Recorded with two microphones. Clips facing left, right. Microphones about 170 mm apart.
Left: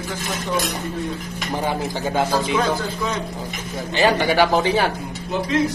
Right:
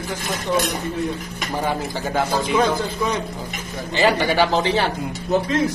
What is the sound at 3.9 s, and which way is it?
Speech, 15° left (ahead or behind).